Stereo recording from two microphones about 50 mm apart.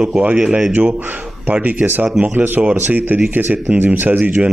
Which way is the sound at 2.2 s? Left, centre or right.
Right.